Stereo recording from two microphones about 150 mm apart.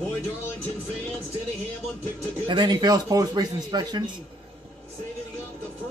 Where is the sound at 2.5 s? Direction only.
30° right (ahead or behind).